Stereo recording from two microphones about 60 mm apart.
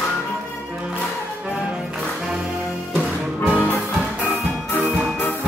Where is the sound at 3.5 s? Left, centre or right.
Right.